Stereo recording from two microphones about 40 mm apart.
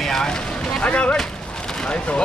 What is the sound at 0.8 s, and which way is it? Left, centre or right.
Speech, left.